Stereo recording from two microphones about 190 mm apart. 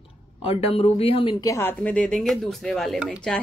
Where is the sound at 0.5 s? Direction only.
30° left (ahead or behind).